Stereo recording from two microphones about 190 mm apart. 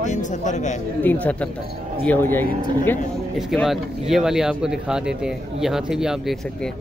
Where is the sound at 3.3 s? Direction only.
Centre (ahead or behind).